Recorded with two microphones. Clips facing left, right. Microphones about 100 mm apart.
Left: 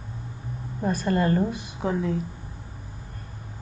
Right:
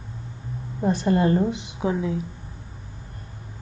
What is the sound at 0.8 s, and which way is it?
Speech, 20° right (ahead or behind).